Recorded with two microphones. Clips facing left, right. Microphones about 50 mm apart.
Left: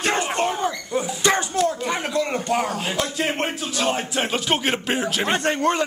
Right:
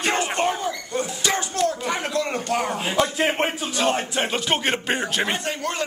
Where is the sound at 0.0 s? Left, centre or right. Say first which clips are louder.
Even; centre.